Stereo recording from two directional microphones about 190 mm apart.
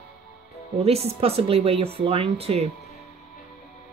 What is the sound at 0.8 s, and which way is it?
A woman's voice, 30° right (ahead or behind).